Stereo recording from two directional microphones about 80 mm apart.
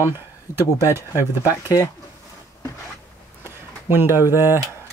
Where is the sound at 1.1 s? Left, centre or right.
Left.